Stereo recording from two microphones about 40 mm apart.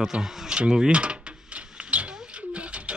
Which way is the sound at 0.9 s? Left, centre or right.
Right.